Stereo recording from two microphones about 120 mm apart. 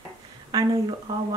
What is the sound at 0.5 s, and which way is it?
Speech, 30° right (ahead or behind).